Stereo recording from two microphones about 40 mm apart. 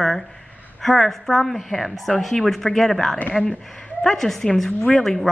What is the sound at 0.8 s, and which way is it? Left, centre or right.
A woman's voice, centre.